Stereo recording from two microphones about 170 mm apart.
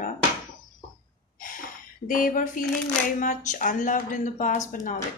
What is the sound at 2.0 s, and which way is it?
Speech, 55° left (ahead or behind).